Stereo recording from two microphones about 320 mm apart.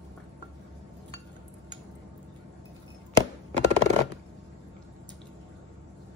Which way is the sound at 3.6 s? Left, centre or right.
Right.